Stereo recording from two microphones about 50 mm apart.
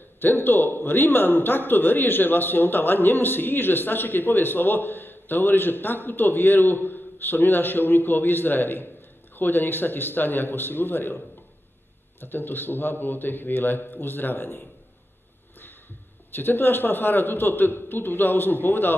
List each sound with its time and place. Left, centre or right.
0.2 s a man's voice: left
16.3 s a man's voice: left